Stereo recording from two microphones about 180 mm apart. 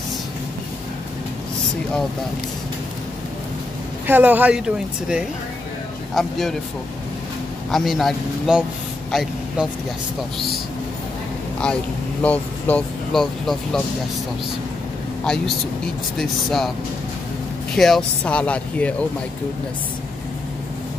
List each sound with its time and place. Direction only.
4.1 s speech: 10° right (ahead or behind)
7.7 s speech: centre (ahead or behind)
11.6 s speech: 5° left (ahead or behind)
15.2 s speech: 5° left (ahead or behind)
17.7 s speech: centre (ahead or behind)